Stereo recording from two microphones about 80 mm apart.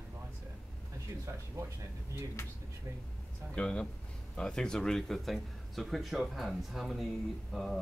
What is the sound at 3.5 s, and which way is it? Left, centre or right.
A man's voice, centre.